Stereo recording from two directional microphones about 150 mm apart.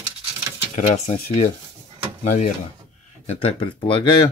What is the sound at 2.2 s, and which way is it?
Speech, 55° left (ahead or behind).